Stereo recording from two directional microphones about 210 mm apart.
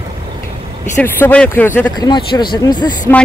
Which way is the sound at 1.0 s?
10° left (ahead or behind).